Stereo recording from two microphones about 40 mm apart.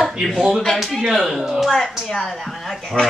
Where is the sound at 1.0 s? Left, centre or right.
Centre.